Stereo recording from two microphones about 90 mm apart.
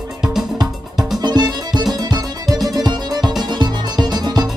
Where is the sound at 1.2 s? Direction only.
50° right (ahead or behind).